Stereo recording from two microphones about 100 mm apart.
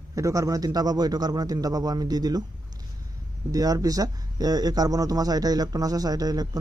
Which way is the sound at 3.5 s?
40° right (ahead or behind).